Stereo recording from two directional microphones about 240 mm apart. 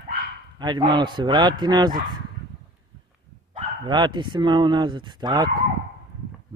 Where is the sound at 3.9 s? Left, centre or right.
Centre.